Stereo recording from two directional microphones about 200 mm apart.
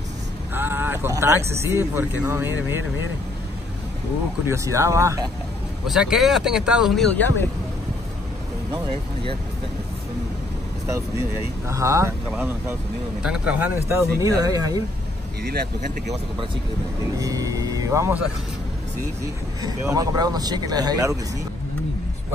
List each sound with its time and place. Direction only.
0.6 s speech: 10° right (ahead or behind)
4.5 s speech: 15° right (ahead or behind)
5.9 s speech: centre (ahead or behind)
11.7 s speech: 15° right (ahead or behind)
15.4 s speech: 55° right (ahead or behind)
17.2 s speech: 15° right (ahead or behind)
19.6 s speech: 20° right (ahead or behind)